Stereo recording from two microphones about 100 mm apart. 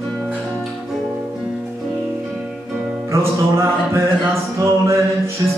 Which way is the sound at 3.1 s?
30° right (ahead or behind).